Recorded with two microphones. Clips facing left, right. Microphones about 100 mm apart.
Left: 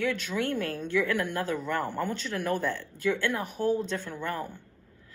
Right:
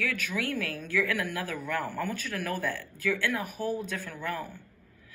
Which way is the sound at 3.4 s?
5° right (ahead or behind).